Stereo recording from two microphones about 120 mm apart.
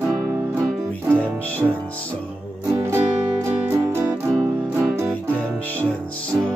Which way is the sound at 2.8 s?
20° right (ahead or behind).